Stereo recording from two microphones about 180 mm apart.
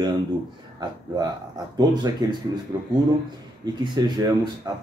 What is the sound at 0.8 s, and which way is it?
Speech, 25° right (ahead or behind).